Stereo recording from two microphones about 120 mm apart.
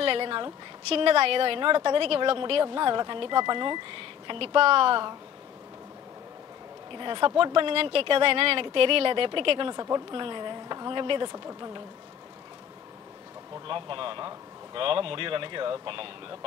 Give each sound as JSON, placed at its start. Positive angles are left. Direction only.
{"t": 0.0, "sound": "a woman's voice", "side_deg": -45}
{"t": 6.9, "sound": "a woman's voice", "side_deg": -40}
{"t": 9.8, "sound": "speech", "side_deg": -35}
{"t": 11.3, "sound": "speech", "side_deg": -30}
{"t": 13.7, "sound": "a woman's voice", "side_deg": -45}